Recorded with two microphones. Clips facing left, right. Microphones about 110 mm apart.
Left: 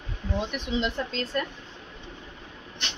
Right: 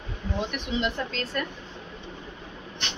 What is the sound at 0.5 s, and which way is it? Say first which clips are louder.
Speech: even; 25° left (ahead or behind).